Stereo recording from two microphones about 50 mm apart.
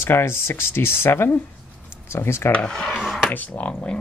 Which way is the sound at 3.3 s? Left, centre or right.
Left.